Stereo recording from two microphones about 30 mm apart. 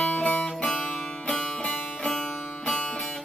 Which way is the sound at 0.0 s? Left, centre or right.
Left.